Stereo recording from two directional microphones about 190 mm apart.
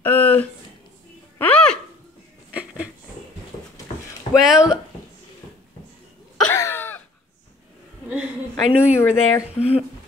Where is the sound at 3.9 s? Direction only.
35° left (ahead or behind).